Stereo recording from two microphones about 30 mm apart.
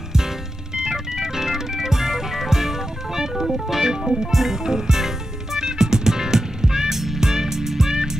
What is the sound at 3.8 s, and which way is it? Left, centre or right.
Music, centre.